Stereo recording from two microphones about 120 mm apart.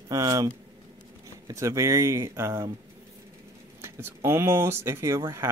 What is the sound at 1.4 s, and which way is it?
Speech, 25° right (ahead or behind).